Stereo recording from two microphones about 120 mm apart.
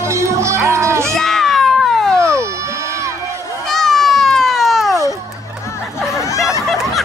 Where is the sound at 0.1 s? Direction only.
25° right (ahead or behind).